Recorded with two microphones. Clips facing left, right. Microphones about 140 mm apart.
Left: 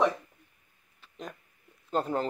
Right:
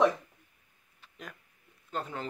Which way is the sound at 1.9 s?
40° left (ahead or behind).